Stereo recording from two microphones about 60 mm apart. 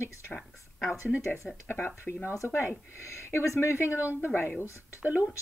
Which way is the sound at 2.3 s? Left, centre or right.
Left.